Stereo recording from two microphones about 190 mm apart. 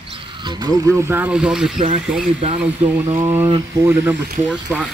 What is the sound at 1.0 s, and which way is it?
Speech, 10° right (ahead or behind).